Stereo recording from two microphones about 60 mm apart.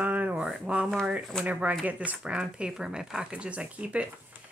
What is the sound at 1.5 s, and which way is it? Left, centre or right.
Speech, right.